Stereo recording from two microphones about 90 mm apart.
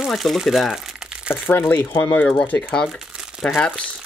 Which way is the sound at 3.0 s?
10° right (ahead or behind).